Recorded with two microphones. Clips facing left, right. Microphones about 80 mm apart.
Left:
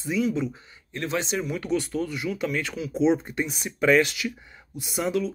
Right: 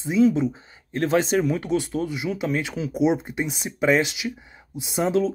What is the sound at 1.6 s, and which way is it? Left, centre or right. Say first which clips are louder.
Speech: right 2 dB; right.